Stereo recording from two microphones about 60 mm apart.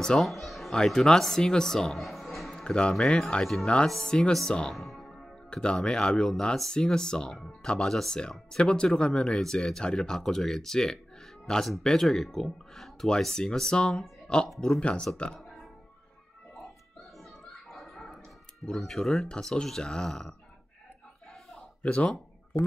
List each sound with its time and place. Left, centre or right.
0.2 s speech: centre
2.7 s speech: centre
4.7 s music: centre
5.5 s speech: centre
14.8 s speech: centre
17.2 s music: centre
18.7 s speech: centre
21.8 s a sound: centre